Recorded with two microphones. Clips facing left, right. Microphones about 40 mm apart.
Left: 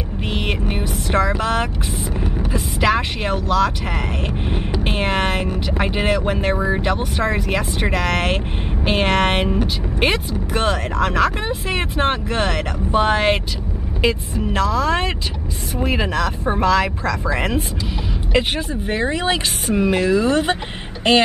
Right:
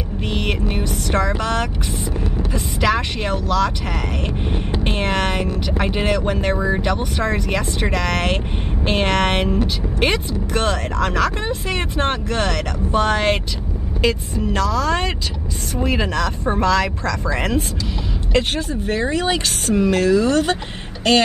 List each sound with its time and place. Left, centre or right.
0.2 s vehicle: centre
0.7 s a sound: centre
1.4 s speech: centre
4.8 s speech: centre